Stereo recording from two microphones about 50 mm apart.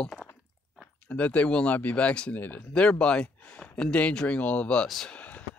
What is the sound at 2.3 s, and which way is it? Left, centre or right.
Speech, left.